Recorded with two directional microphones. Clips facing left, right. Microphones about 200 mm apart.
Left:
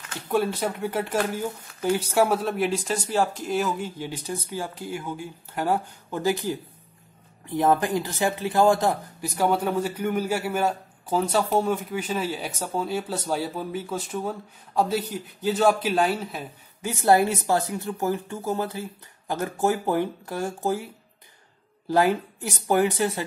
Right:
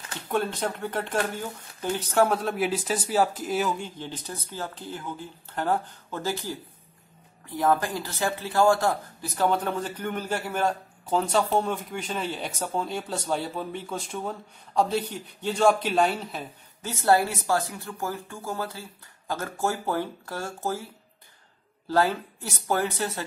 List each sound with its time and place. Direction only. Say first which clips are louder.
0.3 s speech: left 3 dB; 5° left (ahead or behind)
16.8 s speech: left 3 dB; 15° left (ahead or behind)